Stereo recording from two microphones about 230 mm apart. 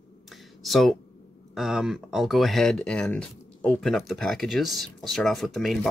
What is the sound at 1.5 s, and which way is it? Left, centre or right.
Speech, centre.